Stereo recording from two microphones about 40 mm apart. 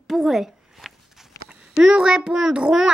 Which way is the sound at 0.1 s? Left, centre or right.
Centre.